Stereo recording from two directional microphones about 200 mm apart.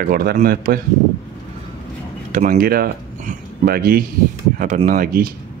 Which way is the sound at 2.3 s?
40° right (ahead or behind).